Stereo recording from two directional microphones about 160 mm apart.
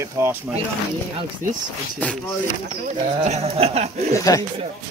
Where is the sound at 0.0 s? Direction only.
15° right (ahead or behind).